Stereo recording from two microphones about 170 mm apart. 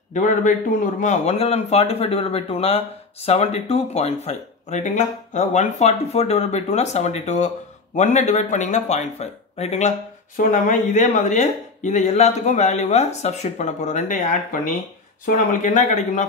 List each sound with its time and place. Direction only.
0.1 s speech: 50° left (ahead or behind)